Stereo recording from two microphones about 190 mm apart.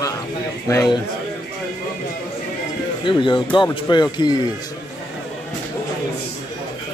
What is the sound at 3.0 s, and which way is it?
Speech, 25° left (ahead or behind).